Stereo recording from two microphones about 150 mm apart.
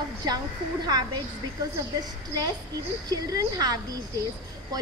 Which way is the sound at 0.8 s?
25° right (ahead or behind).